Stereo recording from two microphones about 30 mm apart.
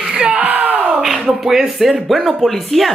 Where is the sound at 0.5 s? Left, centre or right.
Right.